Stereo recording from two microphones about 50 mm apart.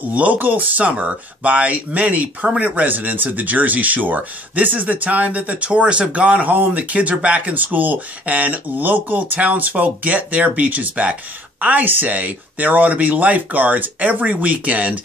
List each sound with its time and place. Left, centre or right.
0.1 s speech: right